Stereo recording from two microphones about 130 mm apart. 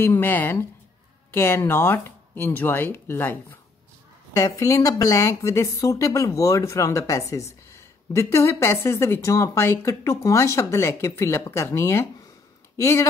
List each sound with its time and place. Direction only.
0.0 s speech: 15° left (ahead or behind)